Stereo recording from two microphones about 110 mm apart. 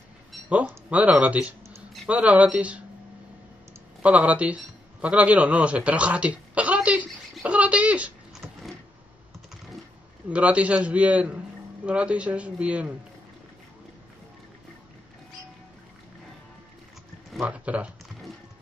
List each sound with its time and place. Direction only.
0.5 s a man's voice: 10° right (ahead or behind)
4.0 s a man's voice: 10° right (ahead or behind)
7.4 s a sound: 10° right (ahead or behind)
8.4 s vehicle: centre (ahead or behind)
10.3 s a man's voice: 10° right (ahead or behind)
17.3 s a man's voice: 5° right (ahead or behind)